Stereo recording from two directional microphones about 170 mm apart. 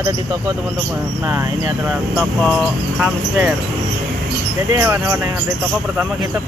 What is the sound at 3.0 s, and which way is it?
Speech, 10° right (ahead or behind).